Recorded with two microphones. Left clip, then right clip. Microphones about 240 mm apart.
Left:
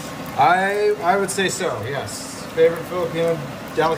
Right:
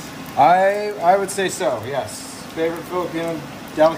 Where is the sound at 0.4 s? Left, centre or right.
Right.